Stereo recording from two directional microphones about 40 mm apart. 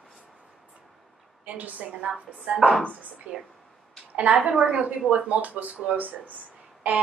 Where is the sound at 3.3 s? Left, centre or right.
Right.